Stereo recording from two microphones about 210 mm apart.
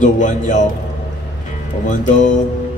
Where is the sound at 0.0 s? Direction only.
35° left (ahead or behind).